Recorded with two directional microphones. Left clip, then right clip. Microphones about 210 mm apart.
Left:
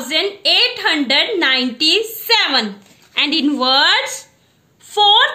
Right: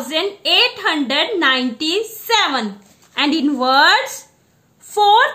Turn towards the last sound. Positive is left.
turn(degrees=-25)  # may be behind; listen again after turning